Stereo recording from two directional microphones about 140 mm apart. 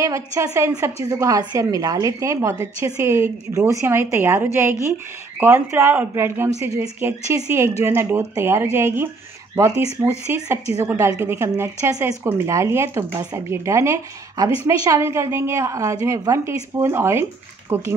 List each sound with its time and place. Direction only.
0.0 s speech: 25° right (ahead or behind)